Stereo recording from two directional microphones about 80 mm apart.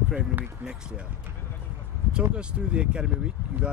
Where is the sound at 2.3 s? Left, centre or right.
Centre.